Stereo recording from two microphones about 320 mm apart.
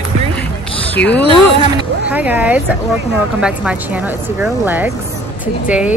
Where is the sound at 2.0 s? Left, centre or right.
Centre.